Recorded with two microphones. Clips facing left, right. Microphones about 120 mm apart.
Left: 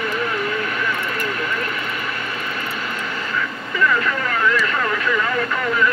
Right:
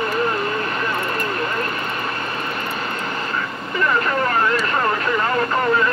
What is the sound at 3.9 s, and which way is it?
Vehicle, 35° right (ahead or behind).